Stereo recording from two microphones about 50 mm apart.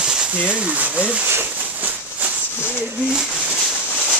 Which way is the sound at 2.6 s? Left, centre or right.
Left.